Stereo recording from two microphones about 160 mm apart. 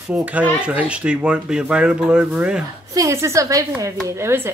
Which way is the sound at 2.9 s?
20° right (ahead or behind).